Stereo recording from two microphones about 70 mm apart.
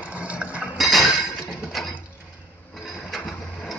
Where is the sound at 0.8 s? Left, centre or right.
Centre.